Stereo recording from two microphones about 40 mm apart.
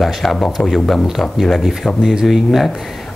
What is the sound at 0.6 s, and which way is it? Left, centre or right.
Speech, left.